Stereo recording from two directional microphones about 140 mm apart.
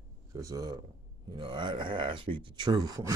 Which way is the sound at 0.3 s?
25° right (ahead or behind).